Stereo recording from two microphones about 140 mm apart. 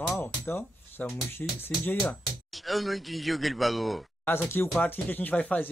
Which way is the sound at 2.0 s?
Centre (ahead or behind).